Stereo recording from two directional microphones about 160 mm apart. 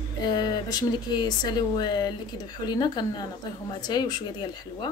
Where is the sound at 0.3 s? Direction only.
25° left (ahead or behind).